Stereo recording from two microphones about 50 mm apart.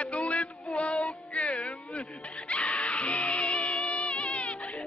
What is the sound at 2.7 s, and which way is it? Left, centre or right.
Music, left.